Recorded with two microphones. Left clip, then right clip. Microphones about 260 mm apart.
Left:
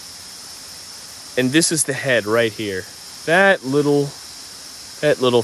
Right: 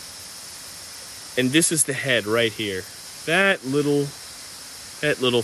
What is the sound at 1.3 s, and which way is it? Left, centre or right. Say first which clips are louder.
Speech: left 3 dB; left.